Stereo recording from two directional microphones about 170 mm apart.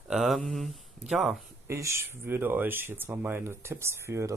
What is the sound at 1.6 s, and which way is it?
Speech, 15° right (ahead or behind).